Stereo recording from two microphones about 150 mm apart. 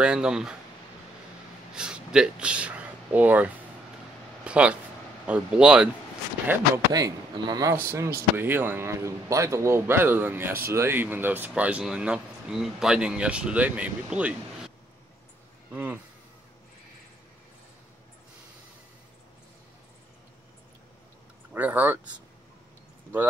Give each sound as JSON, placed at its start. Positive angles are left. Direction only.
{"t": 0.0, "sound": "speech", "side_deg": -5}
{"t": 1.7, "sound": "speech", "side_deg": -5}
{"t": 6.9, "sound": "speech", "side_deg": -25}
{"t": 15.7, "sound": "speech", "side_deg": -10}
{"t": 21.5, "sound": "speech", "side_deg": -10}